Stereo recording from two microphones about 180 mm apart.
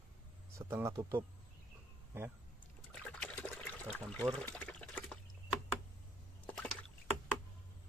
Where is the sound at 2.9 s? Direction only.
5° left (ahead or behind).